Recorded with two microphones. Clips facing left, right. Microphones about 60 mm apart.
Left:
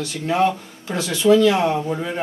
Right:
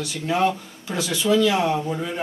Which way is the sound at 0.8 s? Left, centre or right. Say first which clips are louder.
Left 4 dB; left.